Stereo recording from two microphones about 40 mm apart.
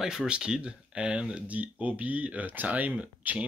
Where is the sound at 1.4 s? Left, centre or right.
Right.